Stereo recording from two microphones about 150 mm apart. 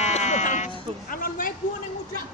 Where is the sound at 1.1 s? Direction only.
65° left (ahead or behind).